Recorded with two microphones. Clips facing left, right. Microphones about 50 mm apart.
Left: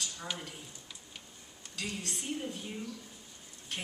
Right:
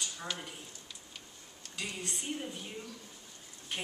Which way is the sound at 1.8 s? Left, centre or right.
Centre.